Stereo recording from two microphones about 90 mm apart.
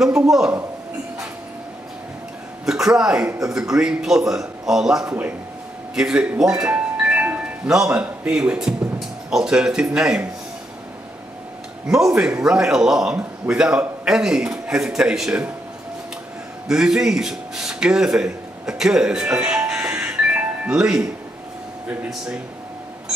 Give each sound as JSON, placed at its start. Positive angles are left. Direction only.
{"t": 0.0, "sound": "speech", "side_deg": -5}
{"t": 2.6, "sound": "a man's voice", "side_deg": -5}
{"t": 6.7, "sound": "music", "side_deg": -15}
{"t": 7.7, "sound": "a man's voice", "side_deg": -10}
{"t": 11.9, "sound": "a man's voice", "side_deg": -5}
{"t": 16.6, "sound": "a man's voice", "side_deg": -10}